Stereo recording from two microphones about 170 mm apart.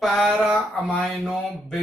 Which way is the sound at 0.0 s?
Centre (ahead or behind).